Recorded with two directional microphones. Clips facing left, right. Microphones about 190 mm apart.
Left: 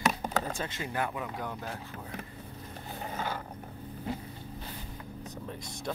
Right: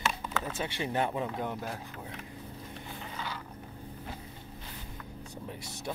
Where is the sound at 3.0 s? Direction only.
45° left (ahead or behind).